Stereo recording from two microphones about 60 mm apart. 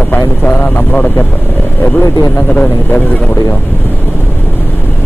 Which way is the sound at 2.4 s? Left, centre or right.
Left.